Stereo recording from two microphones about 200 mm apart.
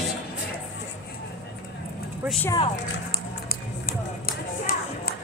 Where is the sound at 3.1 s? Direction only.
50° left (ahead or behind).